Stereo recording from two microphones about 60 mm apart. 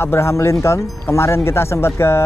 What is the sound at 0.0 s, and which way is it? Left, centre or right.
Speech, left.